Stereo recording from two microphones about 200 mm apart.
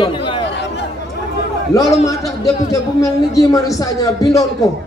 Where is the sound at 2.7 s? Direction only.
15° left (ahead or behind).